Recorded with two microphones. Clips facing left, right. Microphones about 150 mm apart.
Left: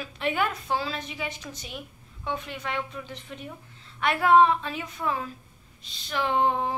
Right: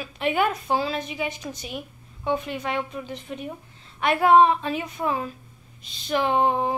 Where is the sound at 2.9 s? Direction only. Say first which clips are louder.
Right 5 dB; 15° right (ahead or behind).